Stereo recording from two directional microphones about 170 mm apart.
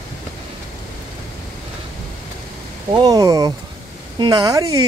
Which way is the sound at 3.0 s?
20° right (ahead or behind).